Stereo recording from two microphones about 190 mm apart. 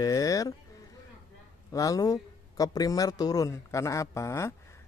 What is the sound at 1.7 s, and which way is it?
Speech, 20° left (ahead or behind).